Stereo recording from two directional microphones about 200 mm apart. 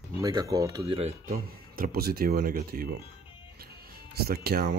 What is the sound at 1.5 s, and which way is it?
Speech, 50° right (ahead or behind).